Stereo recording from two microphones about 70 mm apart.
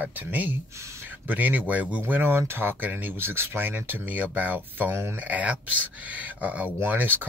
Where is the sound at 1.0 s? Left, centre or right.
Right.